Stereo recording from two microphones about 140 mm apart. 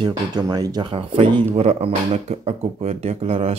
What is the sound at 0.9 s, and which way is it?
Speech, 40° right (ahead or behind).